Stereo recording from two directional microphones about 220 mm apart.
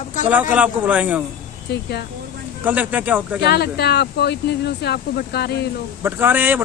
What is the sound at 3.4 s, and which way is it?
Speech, 50° left (ahead or behind).